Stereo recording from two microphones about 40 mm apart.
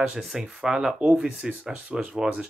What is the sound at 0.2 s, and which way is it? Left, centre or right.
Speech, centre.